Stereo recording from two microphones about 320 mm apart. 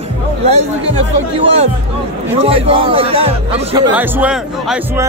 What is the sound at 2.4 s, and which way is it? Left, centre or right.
A man's voice, centre.